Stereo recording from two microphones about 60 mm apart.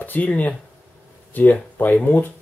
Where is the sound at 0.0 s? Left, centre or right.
Left.